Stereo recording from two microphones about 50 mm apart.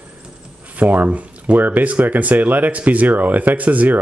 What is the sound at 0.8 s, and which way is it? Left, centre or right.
Speech, right.